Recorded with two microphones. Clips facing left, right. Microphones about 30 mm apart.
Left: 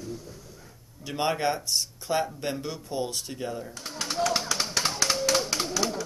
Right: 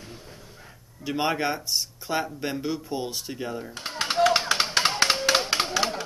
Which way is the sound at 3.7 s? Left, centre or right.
Right.